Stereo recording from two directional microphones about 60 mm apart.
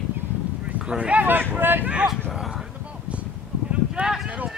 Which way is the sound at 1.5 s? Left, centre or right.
Right.